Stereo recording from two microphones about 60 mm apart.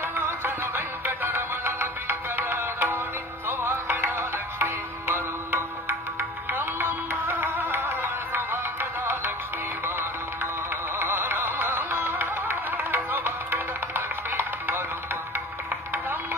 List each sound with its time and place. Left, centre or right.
0.0 s music: right